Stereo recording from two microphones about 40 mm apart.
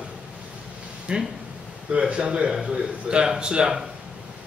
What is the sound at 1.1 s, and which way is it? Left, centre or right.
A man's voice, right.